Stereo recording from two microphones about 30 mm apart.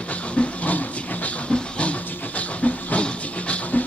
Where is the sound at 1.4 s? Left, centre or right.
Left.